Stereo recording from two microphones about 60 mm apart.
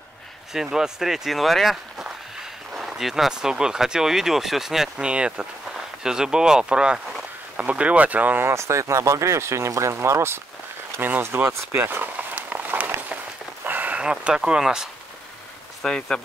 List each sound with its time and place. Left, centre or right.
0.5 s speech: centre
5.0 s speech: centre
8.5 s speech: right
11.0 s speech: right
11.2 s speech: right
12.2 s walk: right
13.7 s a sound: right
14.0 s speech: centre
15.8 s speech: centre